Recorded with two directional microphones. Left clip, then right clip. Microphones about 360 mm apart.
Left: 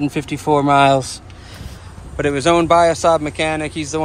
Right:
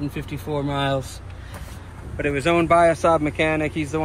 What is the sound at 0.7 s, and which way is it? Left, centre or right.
Speech, centre.